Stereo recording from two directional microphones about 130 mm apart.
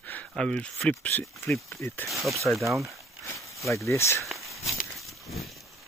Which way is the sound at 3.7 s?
20° left (ahead or behind).